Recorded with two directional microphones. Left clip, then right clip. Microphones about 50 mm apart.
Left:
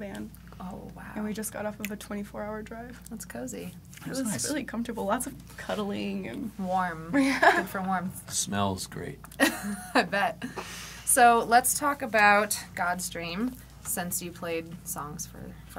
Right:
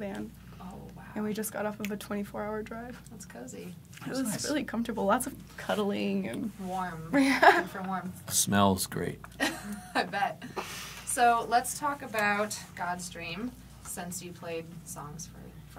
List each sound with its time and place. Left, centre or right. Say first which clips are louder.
1.1 s a woman's voice: right 1 dB; right
4.0 s a woman's voice: left 1 dB; right
7.6 s a woman's voice: left 5 dB; centre
8.3 s a woman's voice: right 5 dB; right
9.4 s a sound: left 6 dB; centre
9.7 s a woman's voice: left 5 dB; centre
11.2 s a woman's voice: left 4 dB; centre